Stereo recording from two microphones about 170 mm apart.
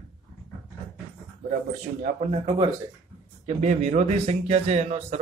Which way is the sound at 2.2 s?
35° right (ahead or behind).